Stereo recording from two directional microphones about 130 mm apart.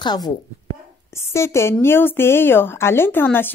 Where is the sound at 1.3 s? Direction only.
20° left (ahead or behind).